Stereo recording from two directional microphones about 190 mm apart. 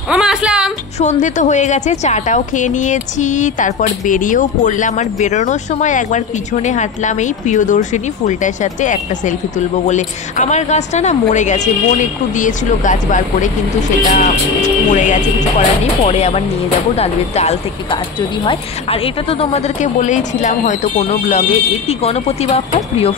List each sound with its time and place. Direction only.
0.1 s music: 5° right (ahead or behind)
0.9 s speech: 40° left (ahead or behind)